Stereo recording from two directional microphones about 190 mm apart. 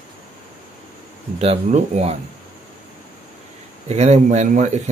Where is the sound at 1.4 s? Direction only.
35° right (ahead or behind).